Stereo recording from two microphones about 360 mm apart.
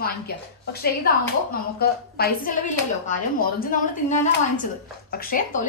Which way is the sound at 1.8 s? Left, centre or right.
Left.